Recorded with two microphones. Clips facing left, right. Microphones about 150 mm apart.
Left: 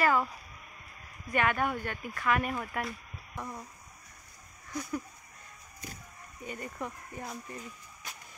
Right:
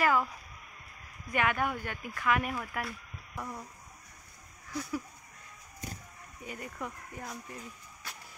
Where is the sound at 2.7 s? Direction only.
Centre (ahead or behind).